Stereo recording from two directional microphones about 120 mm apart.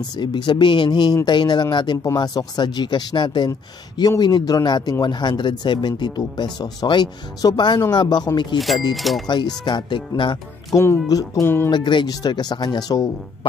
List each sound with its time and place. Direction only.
0.1 s speech: 40° left (ahead or behind)
8.5 s speech: centre (ahead or behind)
9.3 s speech: 40° left (ahead or behind)
10.7 s speech: 25° left (ahead or behind)
11.7 s speech: 40° left (ahead or behind)